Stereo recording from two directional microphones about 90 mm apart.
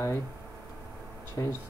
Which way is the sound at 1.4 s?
35° left (ahead or behind).